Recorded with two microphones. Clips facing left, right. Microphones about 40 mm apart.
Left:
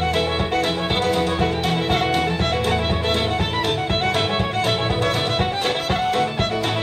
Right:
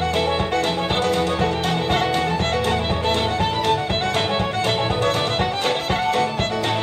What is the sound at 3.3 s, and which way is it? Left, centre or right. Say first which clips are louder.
Music: right 2 dB; left.